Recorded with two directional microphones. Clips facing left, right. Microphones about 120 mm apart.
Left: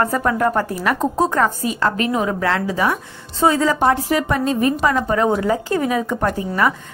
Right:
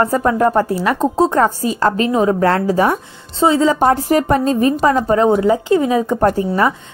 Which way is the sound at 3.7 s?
40° right (ahead or behind).